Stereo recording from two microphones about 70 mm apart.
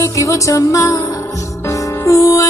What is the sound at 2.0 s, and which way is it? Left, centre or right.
Music, left.